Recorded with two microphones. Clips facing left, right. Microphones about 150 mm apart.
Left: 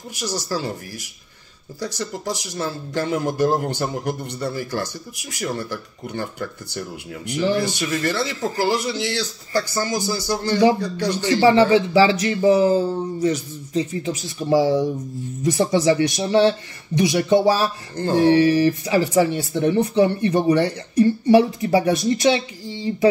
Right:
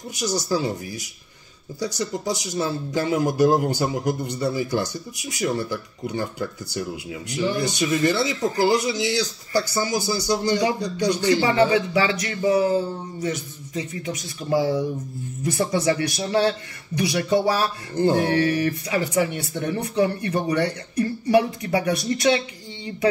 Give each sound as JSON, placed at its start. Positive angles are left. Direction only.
{"t": 0.2, "sound": "speech", "side_deg": -15}
{"t": 1.8, "sound": "speech", "side_deg": -15}
{"t": 7.6, "sound": "speech", "side_deg": -20}
{"t": 11.4, "sound": "speech", "side_deg": 30}